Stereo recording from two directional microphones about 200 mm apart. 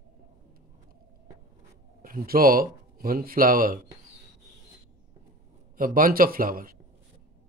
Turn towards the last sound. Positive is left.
turn(degrees=-45)  # may be behind; listen again after turning